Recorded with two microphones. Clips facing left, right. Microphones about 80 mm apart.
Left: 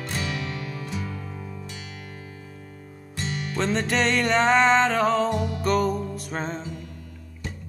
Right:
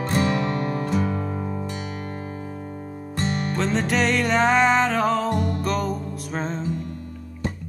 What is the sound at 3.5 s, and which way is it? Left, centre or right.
Music, centre.